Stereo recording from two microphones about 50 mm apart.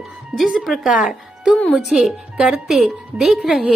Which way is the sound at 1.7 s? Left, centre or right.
Centre.